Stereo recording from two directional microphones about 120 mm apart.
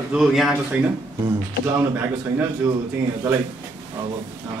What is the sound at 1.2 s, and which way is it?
Speech, 20° right (ahead or behind).